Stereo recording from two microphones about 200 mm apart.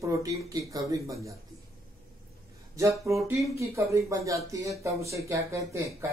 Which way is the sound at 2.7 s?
15° right (ahead or behind).